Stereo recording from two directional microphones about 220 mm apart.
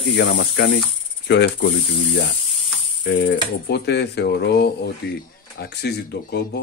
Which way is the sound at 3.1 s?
50° left (ahead or behind).